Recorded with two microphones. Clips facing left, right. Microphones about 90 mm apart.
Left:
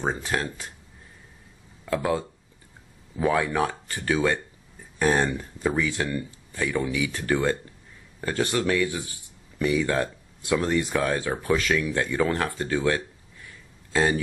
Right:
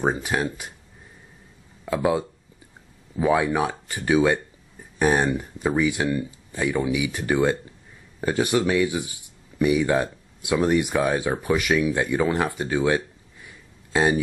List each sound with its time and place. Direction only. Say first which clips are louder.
0.0 s speech: right 4 dB; 10° right (ahead or behind)
1.9 s speech: right 3 dB; 15° right (ahead or behind)